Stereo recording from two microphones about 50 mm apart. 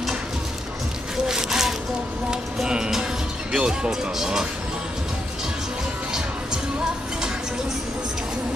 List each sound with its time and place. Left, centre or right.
1.1 s a sound: centre
2.6 s music: centre
3.5 s speech: centre